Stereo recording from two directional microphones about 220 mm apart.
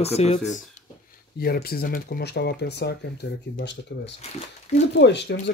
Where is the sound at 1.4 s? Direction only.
45° left (ahead or behind).